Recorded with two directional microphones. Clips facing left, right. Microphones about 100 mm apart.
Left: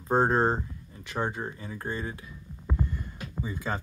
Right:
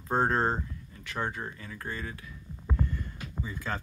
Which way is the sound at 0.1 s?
20° left (ahead or behind).